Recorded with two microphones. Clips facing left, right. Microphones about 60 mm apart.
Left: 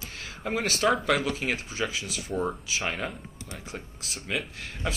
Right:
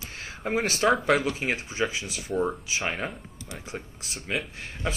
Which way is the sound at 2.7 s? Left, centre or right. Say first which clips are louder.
Right 1 dB; centre.